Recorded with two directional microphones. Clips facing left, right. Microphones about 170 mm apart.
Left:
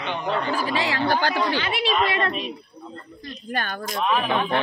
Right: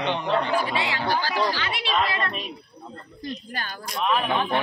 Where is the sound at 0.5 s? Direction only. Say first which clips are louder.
Left 1 dB; 40° left (ahead or behind).